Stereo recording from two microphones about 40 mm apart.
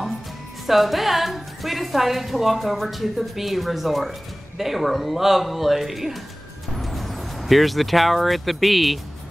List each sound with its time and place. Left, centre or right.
0.7 s a woman's voice: centre